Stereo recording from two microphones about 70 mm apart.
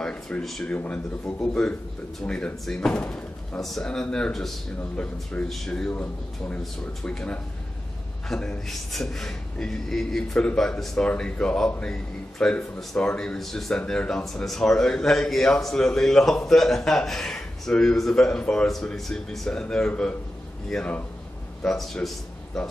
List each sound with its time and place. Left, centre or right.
0.0 s a sound: centre
0.4 s a man's voice: centre
0.7 s a man's voice: centre
3.6 s speech: centre
4.9 s a man's voice: centre
7.1 s a man's voice: centre